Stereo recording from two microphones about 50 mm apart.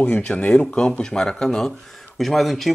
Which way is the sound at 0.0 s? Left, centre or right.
Left.